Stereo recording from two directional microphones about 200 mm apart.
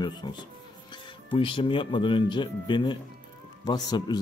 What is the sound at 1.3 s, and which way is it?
Speech, 25° left (ahead or behind).